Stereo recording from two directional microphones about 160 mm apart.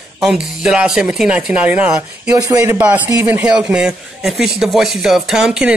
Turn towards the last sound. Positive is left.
turn(degrees=-5)  # may be behind; listen again after turning